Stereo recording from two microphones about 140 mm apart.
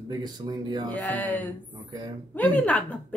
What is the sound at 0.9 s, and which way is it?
Speech, 10° left (ahead or behind).